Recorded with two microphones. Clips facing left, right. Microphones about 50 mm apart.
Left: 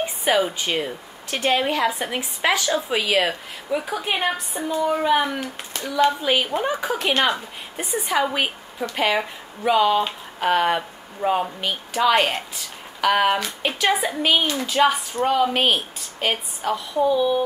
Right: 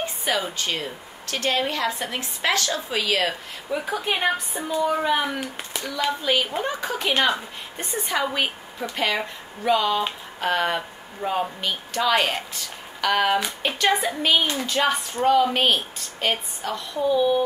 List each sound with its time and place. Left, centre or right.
0.0 s a woman's voice: centre
5.4 s a woman's voice: centre
6.0 s a woman's voice: centre